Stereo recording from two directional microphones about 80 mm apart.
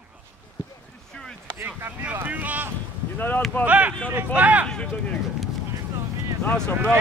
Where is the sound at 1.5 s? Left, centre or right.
Right.